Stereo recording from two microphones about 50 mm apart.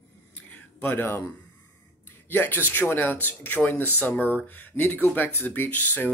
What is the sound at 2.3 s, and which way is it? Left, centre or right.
Speech, left.